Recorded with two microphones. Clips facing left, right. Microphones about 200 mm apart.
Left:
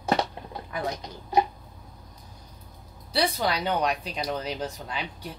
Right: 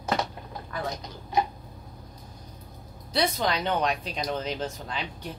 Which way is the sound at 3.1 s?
Centre (ahead or behind).